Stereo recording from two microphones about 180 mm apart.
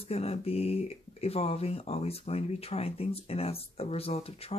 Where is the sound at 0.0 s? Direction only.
35° left (ahead or behind).